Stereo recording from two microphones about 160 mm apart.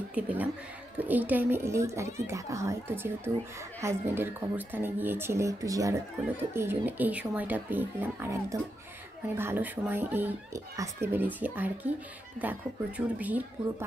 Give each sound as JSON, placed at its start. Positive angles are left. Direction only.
{"t": 0.1, "sound": "speech", "side_deg": -10}